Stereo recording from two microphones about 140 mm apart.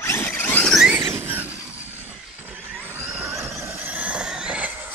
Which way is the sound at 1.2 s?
15° right (ahead or behind).